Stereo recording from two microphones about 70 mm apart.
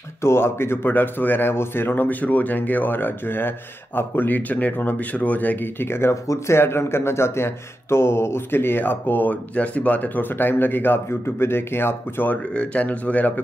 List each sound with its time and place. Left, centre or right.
0.2 s speech: left
12.5 s speech: centre